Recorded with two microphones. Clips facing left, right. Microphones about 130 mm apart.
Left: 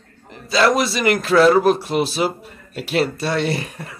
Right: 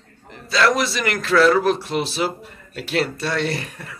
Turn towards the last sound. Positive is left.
turn(degrees=25)  # may be behind; listen again after turning